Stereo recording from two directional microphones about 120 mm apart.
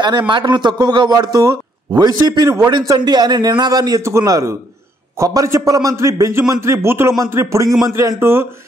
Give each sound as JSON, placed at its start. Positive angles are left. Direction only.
{"t": 0.3, "sound": "a man's voice", "side_deg": -40}